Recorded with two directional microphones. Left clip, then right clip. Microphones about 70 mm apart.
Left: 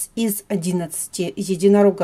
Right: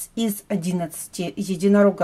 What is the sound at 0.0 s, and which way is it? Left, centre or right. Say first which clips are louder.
Speech: left 2 dB; left.